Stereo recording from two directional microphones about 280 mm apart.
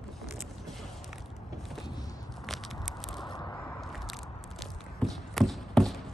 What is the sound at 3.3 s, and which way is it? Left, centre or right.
Biting, centre.